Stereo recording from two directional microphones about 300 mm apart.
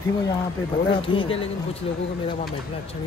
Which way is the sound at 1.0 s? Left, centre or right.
Centre.